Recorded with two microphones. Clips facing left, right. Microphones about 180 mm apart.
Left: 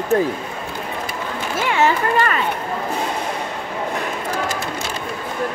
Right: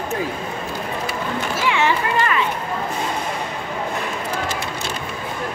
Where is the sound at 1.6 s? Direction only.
45° left (ahead or behind).